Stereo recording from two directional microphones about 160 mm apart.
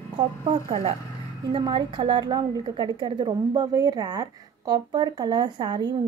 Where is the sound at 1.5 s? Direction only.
30° right (ahead or behind).